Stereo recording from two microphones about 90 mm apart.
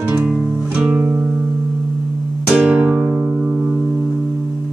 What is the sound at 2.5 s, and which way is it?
Music, 10° right (ahead or behind).